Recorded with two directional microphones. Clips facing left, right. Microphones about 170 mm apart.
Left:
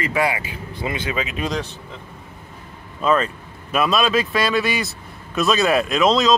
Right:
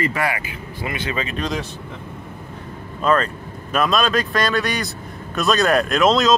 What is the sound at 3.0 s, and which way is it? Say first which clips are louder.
Speech: even; 5° left (ahead or behind).